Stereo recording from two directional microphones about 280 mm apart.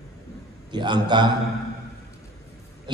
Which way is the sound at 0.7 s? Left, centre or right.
Centre.